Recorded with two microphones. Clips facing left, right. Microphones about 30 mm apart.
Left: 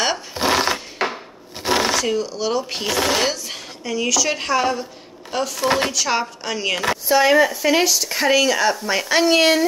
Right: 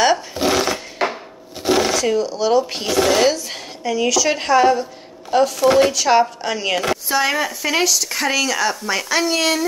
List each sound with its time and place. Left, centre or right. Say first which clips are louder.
0.4 s sewing machine: left 3 dB; centre
1.6 s shuffling cards: right 2 dB; centre
2.0 s speech: right 4 dB; centre
5.6 s speech: right 5 dB; centre
5.9 s speech: right 6 dB; centre
9.2 s speech: left 7 dB; centre